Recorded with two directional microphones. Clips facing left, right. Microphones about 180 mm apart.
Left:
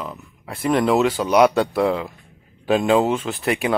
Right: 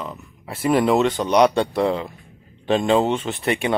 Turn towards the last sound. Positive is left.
turn(degrees=0)  # may be behind; listen again after turning